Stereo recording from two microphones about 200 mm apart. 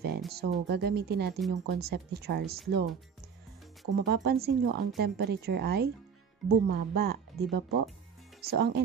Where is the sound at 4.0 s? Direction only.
50° right (ahead or behind).